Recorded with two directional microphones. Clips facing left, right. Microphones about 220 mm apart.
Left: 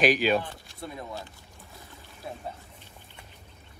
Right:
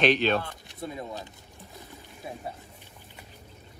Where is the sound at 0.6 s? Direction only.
20° right (ahead or behind).